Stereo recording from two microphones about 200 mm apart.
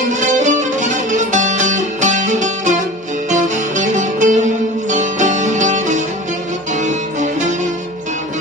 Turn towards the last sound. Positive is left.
turn(degrees=-35)  # may be behind; listen again after turning